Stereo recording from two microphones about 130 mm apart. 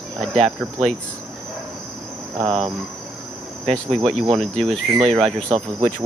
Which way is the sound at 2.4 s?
50° right (ahead or behind).